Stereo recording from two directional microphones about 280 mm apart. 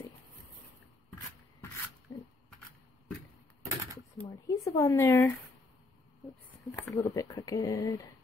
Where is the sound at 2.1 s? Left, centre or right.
Centre.